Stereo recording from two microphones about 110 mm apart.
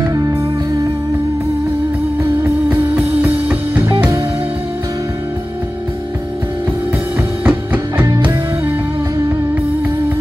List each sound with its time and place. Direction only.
0.0 s music: 35° right (ahead or behind)
2.4 s music: 15° right (ahead or behind)
7.4 s music: 20° right (ahead or behind)